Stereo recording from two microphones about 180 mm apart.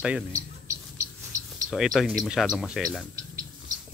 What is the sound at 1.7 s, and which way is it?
Speech, centre (ahead or behind).